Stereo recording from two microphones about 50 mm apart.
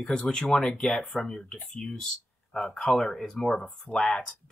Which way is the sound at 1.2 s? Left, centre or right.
Centre.